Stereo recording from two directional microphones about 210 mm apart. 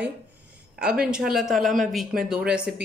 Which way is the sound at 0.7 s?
5° right (ahead or behind).